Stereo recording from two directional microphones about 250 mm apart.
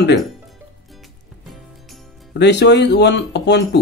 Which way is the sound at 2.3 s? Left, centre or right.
Left.